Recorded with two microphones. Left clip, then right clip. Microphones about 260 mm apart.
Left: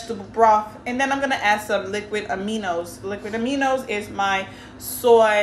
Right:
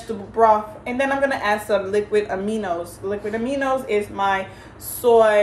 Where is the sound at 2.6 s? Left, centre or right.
Centre.